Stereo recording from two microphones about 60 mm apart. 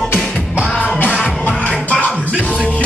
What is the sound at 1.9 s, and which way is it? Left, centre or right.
Music, left.